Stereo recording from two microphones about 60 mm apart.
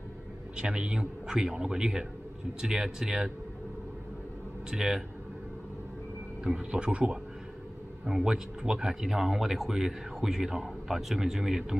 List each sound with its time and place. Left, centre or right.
0.6 s speech: centre
4.6 s speech: centre
6.4 s speech: centre